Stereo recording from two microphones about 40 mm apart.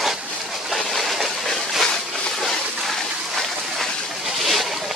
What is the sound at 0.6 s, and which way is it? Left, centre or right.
Train, centre.